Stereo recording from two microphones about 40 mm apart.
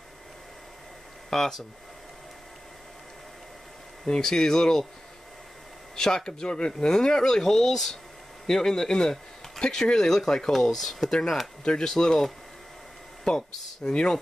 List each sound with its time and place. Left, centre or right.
1.3 s speech: centre
4.0 s speech: centre
5.9 s speech: centre
11.6 s speech: left
11.9 s speech: centre